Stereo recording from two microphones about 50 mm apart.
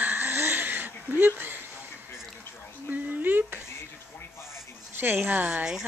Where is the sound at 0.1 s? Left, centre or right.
Right.